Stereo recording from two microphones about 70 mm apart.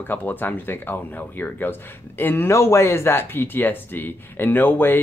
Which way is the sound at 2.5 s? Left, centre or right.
Left.